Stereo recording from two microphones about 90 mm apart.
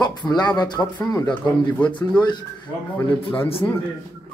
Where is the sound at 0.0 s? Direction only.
50° left (ahead or behind).